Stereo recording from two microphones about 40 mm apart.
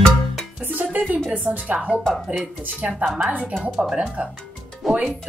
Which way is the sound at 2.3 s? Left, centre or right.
Right.